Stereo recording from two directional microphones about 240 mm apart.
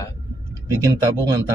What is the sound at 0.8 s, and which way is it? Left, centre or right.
Speech, centre.